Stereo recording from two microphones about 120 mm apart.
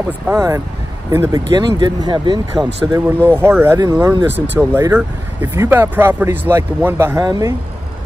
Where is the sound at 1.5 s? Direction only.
35° right (ahead or behind).